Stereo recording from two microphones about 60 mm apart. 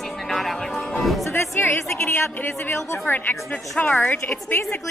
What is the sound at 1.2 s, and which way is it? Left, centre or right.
Music, left.